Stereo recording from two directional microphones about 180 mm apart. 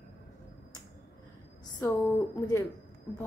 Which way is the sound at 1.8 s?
15° left (ahead or behind).